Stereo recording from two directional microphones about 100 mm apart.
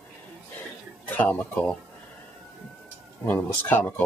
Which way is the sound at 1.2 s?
15° left (ahead or behind).